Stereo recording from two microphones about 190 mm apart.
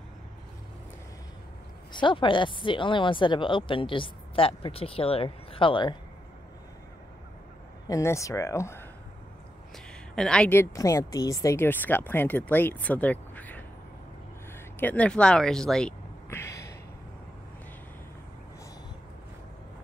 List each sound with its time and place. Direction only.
1.9 s speech: 25° left (ahead or behind)
7.9 s speech: 15° left (ahead or behind)
10.1 s speech: 5° left (ahead or behind)
14.8 s speech: 10° left (ahead or behind)
16.3 s a sound: 15° left (ahead or behind)